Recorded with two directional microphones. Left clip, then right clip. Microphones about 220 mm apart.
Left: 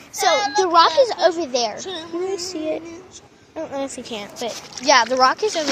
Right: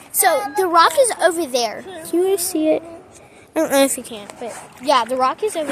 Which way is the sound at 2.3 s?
35° right (ahead or behind).